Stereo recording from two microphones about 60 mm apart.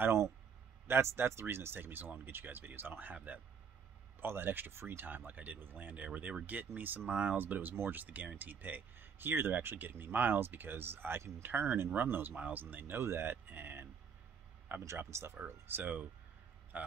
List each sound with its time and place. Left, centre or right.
0.0 s a sound: right
0.8 s speech: right
15.0 s speech: right
15.4 s speech: right